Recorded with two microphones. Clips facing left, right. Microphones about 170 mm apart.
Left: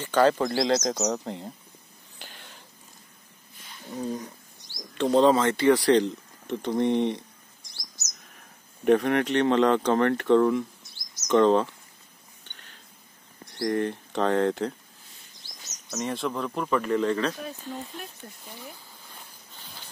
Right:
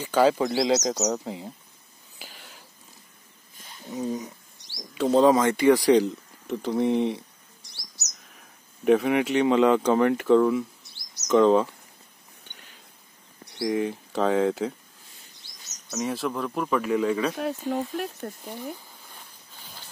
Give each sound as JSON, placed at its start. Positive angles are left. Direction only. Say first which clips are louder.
{"t": 0.0, "sound": "speech", "louder": "right 1 dB", "side_deg": -10}
{"t": 2.1, "sound": "a sound", "louder": "even", "side_deg": -5}
{"t": 3.9, "sound": "a sound", "louder": "right 2 dB", "side_deg": -10}
{"t": 4.6, "sound": "a sound", "louder": "even", "side_deg": -75}
{"t": 4.9, "sound": "speech", "louder": "right 1 dB", "side_deg": -5}
{"t": 7.6, "sound": "chirp", "louder": "even", "side_deg": -70}
{"t": 8.3, "sound": "speech", "louder": "even", "side_deg": 0}
{"t": 13.6, "sound": "speech", "louder": "even", "side_deg": -5}
{"t": 15.9, "sound": "speech", "louder": "right 1 dB", "side_deg": -5}
{"t": 17.4, "sound": "speech", "louder": "right 9 dB", "side_deg": -80}